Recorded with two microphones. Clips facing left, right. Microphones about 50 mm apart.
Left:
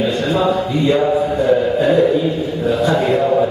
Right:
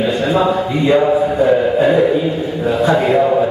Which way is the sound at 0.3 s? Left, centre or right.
Centre.